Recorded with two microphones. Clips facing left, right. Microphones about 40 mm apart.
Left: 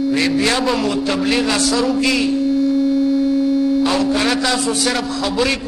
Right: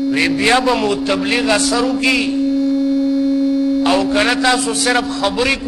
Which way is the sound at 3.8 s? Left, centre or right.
Centre.